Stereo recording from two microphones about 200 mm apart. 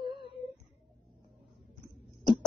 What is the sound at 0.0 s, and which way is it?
Humming, 25° right (ahead or behind).